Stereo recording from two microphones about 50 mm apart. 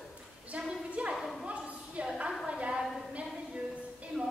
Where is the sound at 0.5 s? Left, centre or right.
Right.